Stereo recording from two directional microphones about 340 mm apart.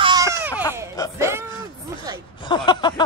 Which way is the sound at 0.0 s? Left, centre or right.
Centre.